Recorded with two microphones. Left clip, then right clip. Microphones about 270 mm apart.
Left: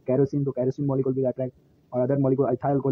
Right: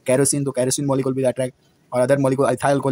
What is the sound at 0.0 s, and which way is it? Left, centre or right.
Speech, right.